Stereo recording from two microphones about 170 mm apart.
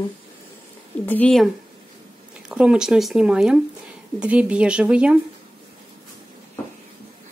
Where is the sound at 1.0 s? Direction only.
10° left (ahead or behind).